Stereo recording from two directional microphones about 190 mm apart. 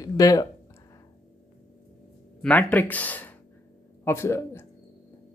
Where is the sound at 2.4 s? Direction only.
5° left (ahead or behind).